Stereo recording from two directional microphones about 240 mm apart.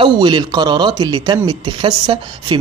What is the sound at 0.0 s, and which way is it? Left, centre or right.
Speech, centre.